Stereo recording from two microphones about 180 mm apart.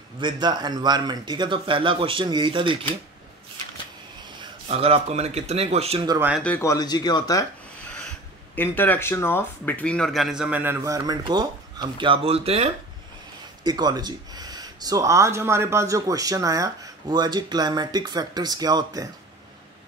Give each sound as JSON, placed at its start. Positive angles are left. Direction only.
{"t": 0.2, "sound": "speech", "side_deg": -25}
{"t": 4.4, "sound": "speech", "side_deg": -35}
{"t": 6.0, "sound": "speech", "side_deg": -10}
{"t": 6.4, "sound": "speech", "side_deg": 15}
{"t": 8.5, "sound": "speech", "side_deg": 10}
{"t": 13.7, "sound": "speech", "side_deg": -20}